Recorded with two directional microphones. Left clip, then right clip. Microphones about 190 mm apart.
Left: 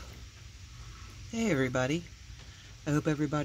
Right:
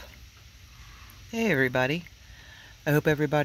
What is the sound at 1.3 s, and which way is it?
Speech, 20° right (ahead or behind).